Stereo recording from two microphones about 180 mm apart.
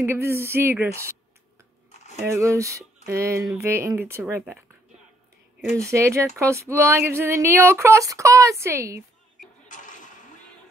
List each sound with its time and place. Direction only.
0.0 s speech: 15° right (ahead or behind)
2.1 s speech: 15° right (ahead or behind)
5.9 s speech: 15° right (ahead or behind)
9.7 s a sound: 45° left (ahead or behind)